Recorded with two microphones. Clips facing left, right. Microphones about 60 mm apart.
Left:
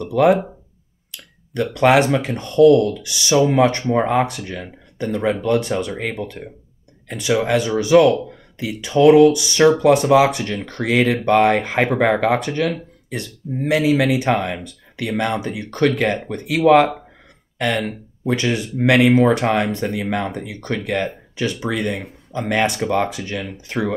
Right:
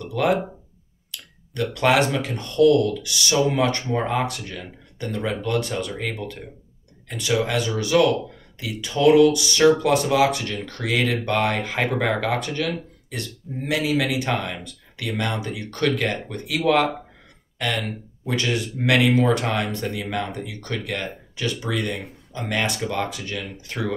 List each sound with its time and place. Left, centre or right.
1.5 s speech: left